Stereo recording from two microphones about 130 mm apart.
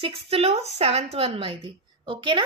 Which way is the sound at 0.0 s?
50° right (ahead or behind).